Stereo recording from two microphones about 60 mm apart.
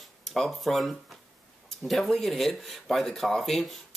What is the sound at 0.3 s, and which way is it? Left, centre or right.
Speech, centre.